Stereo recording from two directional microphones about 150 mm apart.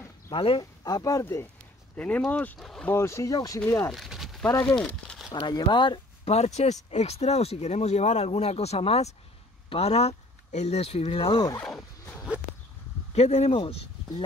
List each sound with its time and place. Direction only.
0.3 s speech: 35° left (ahead or behind)
0.8 s speech: 25° left (ahead or behind); by 2.9 s 5° left (ahead or behind)
2.9 s speech: 20° left (ahead or behind)
3.9 s a sound: centre (ahead or behind)
4.5 s speech: 25° left (ahead or behind)
4.7 s speech: 5° left (ahead or behind)
5.3 s speech: 30° left (ahead or behind)
6.2 s speech: 45° left (ahead or behind)
11.6 s dog: 5° left (ahead or behind)
13.1 s speech: 45° left (ahead or behind)